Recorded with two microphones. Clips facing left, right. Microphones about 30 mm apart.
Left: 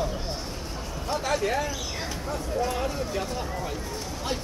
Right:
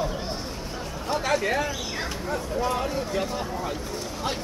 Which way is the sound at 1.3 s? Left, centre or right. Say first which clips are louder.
Right 2 dB; centre.